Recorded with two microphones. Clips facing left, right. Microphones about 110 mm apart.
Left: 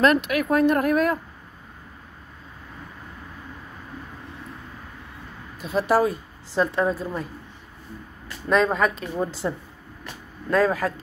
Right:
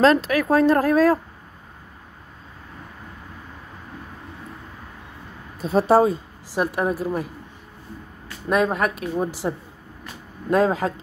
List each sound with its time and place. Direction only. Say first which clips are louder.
0.0 s speech: right 3 dB; 30° right (ahead or behind)
5.6 s speech: right 4 dB; 30° right (ahead or behind)
6.5 s a woman's voice: even; 15° right (ahead or behind)
8.5 s a woman's voice: even; 10° right (ahead or behind)
10.5 s speech: right 2 dB; 20° right (ahead or behind)